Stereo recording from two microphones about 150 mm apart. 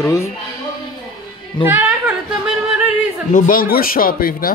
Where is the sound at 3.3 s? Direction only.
65° left (ahead or behind).